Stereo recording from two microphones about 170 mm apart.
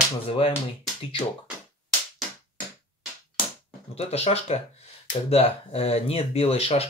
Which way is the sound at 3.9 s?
35° left (ahead or behind).